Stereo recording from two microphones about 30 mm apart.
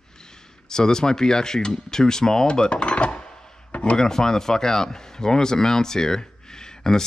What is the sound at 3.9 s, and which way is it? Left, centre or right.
Speech, centre.